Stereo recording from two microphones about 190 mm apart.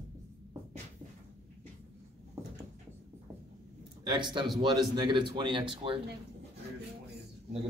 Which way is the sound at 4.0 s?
25° right (ahead or behind).